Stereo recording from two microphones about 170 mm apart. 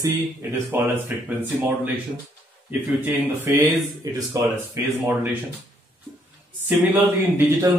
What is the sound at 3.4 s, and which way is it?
Speech, 15° right (ahead or behind).